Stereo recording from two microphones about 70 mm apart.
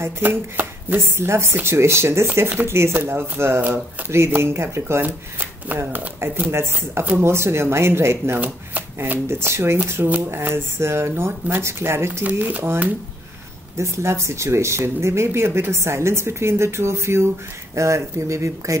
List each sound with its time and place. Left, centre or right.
0.0 s speech: right
5.9 s speech: right
6.5 s speech: right
8.4 s speech: right
9.3 s speech: right
10.0 s speech: right
10.4 s speech: right
12.3 s speech: right
13.7 s speech: right